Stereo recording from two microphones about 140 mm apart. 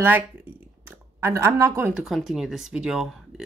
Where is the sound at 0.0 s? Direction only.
15° right (ahead or behind).